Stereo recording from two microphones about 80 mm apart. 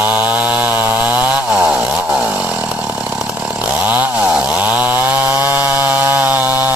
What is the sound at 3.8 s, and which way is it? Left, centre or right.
Chainsaw, right.